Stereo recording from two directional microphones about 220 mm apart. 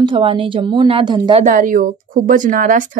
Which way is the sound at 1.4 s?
35° right (ahead or behind).